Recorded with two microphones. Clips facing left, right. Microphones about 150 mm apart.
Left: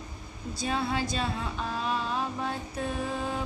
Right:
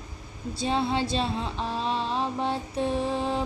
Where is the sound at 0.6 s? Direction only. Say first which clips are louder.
Right 4 dB; 25° right (ahead or behind).